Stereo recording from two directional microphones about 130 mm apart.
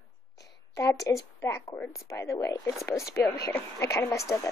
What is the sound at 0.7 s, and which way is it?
Speech, 20° left (ahead or behind).